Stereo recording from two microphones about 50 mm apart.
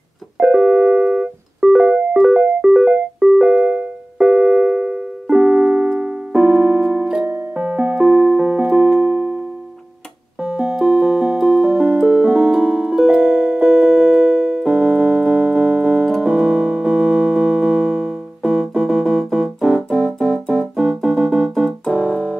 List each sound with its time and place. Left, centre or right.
0.4 s keyboard: centre
2.1 s music: centre
2.7 s keyboard: centre
6.9 s music: centre
7.5 s keyboard: centre
10.4 s music: right
20.2 s keyboard: centre